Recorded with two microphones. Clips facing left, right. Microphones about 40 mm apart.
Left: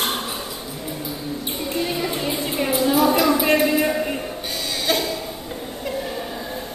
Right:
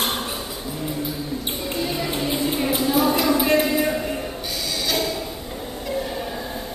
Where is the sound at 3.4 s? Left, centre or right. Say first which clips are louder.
Left 1 dB; left.